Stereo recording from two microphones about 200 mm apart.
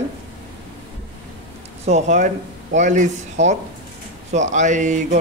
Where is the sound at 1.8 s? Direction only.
35° right (ahead or behind).